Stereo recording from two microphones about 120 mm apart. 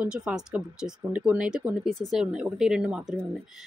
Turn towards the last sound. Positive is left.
turn(degrees=-5)  # may be behind; listen again after turning